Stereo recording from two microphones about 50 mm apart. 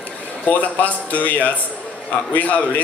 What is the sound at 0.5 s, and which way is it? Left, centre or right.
A man's voice, left.